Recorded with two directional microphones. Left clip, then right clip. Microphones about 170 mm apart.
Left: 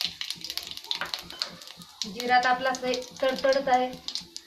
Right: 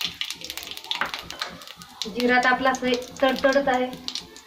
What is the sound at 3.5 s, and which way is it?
Speech, 10° left (ahead or behind).